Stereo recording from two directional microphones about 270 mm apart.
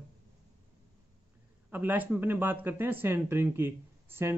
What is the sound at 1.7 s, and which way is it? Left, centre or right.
Speech, centre.